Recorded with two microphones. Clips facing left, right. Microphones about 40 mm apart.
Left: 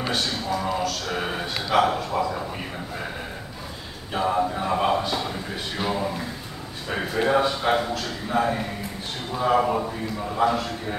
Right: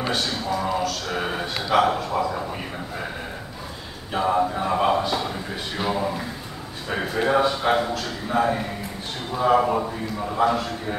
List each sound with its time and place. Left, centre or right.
0.1 s speech: centre
4.1 s speech: centre
9.8 s a man's voice: centre
10.4 s speech: centre